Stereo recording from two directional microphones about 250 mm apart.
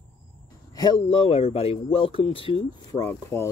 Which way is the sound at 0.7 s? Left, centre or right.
Centre.